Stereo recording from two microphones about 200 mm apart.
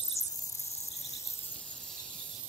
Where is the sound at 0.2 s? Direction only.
15° left (ahead or behind).